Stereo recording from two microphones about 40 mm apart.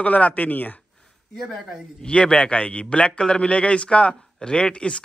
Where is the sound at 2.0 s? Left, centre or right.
Left.